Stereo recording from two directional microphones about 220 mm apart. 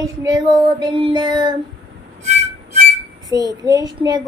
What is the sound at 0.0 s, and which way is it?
Child singing, 15° right (ahead or behind).